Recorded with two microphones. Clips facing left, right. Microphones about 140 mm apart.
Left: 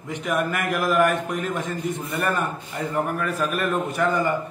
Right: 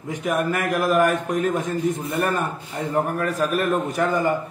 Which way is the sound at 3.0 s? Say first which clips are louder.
Right 3 dB; 40° right (ahead or behind).